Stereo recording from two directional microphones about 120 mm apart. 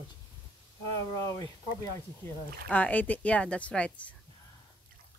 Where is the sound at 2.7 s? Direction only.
10° left (ahead or behind).